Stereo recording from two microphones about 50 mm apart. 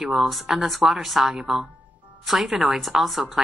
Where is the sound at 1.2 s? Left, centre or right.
Right.